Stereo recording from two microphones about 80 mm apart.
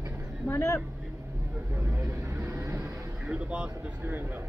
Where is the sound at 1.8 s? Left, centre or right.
Right.